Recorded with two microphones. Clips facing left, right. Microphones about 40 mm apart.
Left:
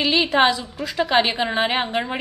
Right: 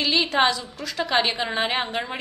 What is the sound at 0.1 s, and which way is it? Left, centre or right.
A woman's voice, centre.